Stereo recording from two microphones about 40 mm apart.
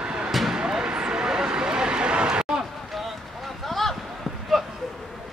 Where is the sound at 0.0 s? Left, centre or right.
Right.